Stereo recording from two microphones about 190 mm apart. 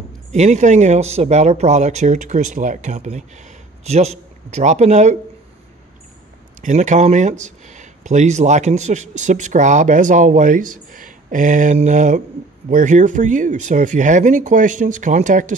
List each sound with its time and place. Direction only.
0.3 s speech: 40° right (ahead or behind)
6.6 s speech: 40° right (ahead or behind)